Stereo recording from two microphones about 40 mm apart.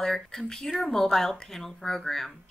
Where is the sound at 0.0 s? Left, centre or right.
Centre.